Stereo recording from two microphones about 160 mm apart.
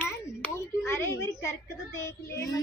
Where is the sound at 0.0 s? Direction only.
15° left (ahead or behind).